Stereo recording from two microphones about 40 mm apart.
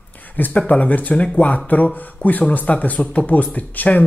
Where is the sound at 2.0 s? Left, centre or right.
Left.